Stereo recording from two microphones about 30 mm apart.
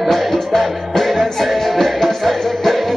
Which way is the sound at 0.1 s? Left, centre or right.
Centre.